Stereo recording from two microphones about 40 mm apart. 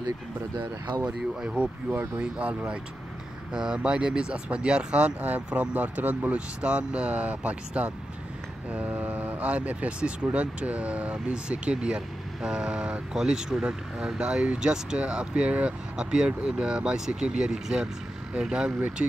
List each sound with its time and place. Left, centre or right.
1.0 s speech: right
6.3 s speech: right
8.9 s speech: right
16.0 s speech: right
19.0 s speech: right